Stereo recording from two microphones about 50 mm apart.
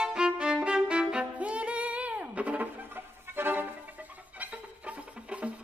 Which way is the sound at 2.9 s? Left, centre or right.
Right.